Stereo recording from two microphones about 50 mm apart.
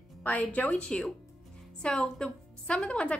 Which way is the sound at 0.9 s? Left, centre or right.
Centre.